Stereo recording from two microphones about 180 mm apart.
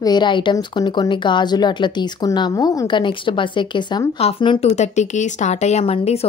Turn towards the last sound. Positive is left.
turn(degrees=35)  # may be behind; listen again after turning